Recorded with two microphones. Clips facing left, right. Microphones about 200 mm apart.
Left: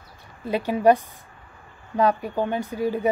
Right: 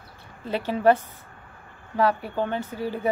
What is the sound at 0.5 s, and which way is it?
Speech, 15° left (ahead or behind).